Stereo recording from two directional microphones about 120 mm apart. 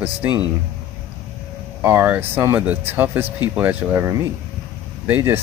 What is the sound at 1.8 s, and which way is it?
Speech, 15° right (ahead or behind).